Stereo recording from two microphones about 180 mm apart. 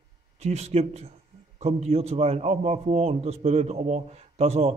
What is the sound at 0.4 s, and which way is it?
Speech, 40° right (ahead or behind).